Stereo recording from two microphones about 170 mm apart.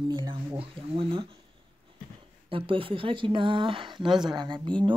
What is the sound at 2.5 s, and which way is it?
A woman's voice, 30° right (ahead or behind).